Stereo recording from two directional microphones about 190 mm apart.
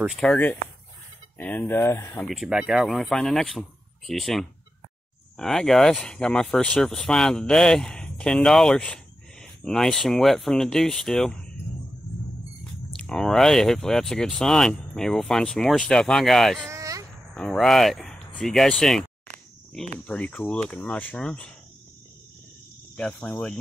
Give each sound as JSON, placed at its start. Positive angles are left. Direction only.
{"t": 0.0, "sound": "speech", "side_deg": 0}
{"t": 2.2, "sound": "speech", "side_deg": 0}
{"t": 12.9, "sound": "speech", "side_deg": 5}
{"t": 16.6, "sound": "a sound", "side_deg": -15}
{"t": 17.3, "sound": "speech", "side_deg": 5}
{"t": 20.1, "sound": "speech", "side_deg": 5}
{"t": 22.9, "sound": "speech", "side_deg": 5}